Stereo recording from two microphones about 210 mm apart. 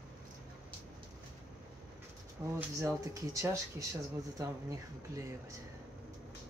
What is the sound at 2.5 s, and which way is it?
Speech, 15° right (ahead or behind).